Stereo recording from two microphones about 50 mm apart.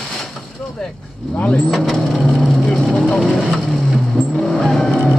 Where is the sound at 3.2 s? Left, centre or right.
Centre.